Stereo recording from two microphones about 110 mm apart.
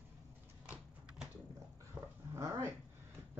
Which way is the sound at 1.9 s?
40° right (ahead or behind).